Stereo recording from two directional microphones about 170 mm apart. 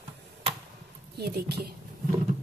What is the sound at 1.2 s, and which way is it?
Speech, 70° right (ahead or behind).